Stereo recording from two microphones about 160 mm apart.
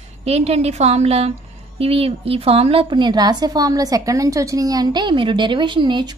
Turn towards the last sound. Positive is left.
turn(degrees=-30)  # may be behind; listen again after turning